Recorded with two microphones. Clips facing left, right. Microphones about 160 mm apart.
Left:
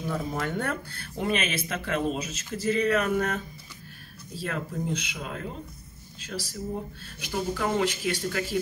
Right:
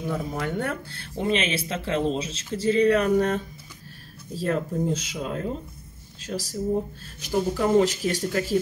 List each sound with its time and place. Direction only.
0.0 s speech: 5° right (ahead or behind); by 8.5 s 40° right (ahead or behind)